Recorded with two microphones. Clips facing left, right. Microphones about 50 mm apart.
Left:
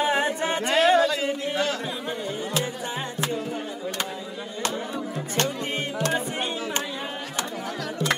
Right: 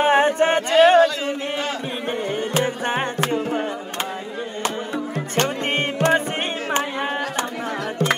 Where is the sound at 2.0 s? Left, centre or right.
Right.